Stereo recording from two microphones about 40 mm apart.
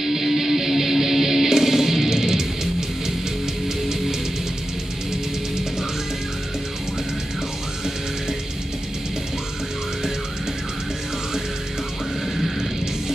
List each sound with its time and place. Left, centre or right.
0.0 s music: centre
12.4 s music: centre